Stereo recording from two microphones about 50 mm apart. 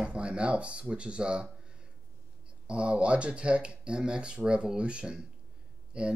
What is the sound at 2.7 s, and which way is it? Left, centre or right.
Speech, right.